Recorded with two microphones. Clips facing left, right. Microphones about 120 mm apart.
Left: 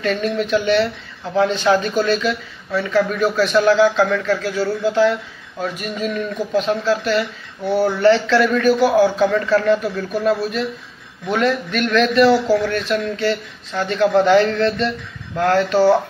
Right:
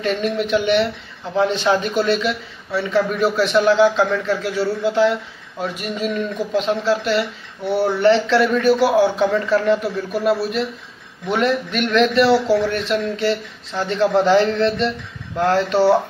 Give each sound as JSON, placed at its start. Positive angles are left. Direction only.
{"t": 0.0, "sound": "speech", "side_deg": -20}